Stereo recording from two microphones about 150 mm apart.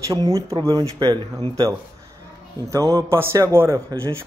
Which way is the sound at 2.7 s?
20° right (ahead or behind).